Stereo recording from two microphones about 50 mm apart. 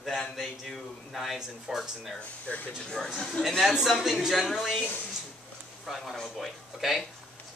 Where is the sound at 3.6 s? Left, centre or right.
Centre.